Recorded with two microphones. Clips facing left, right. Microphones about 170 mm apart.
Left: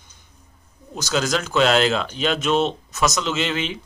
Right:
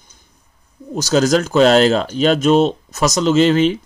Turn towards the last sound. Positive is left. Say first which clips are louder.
# right 12 dB
turn(degrees=-40)  # may be behind; listen again after turning